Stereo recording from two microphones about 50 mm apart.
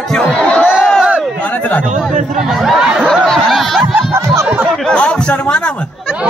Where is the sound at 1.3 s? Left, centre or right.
Left.